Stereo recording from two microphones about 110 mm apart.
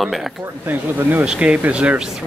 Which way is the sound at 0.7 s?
15° right (ahead or behind).